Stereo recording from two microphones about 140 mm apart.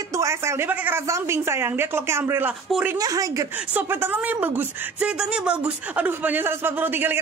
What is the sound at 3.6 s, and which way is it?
Speech, 15° right (ahead or behind).